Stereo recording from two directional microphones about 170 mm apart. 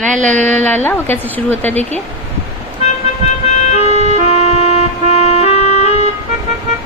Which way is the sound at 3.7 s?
40° left (ahead or behind).